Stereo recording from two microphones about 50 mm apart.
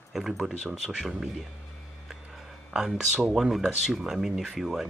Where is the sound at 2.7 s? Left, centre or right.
Centre.